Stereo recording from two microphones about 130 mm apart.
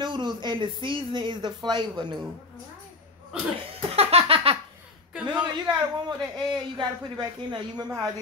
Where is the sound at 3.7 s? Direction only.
50° right (ahead or behind).